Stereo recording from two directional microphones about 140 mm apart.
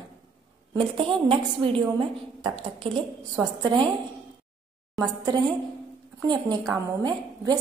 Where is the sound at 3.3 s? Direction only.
30° right (ahead or behind).